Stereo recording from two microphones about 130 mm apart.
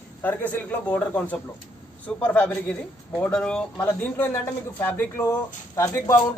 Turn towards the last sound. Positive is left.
turn(degrees=25)  # may be behind; listen again after turning